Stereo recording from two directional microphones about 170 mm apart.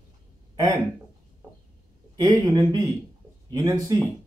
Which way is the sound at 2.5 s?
20° right (ahead or behind).